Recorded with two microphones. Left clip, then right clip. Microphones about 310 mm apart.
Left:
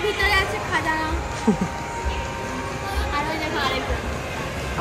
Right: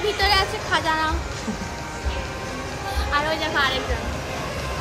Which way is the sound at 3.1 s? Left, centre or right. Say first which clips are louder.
Right 4 dB; centre.